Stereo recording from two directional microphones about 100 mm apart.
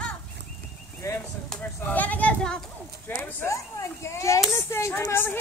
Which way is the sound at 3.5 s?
30° left (ahead or behind).